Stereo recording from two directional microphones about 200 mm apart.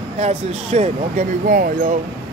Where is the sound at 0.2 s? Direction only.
35° right (ahead or behind).